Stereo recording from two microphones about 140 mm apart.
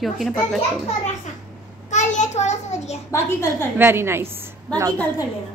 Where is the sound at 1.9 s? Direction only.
55° left (ahead or behind).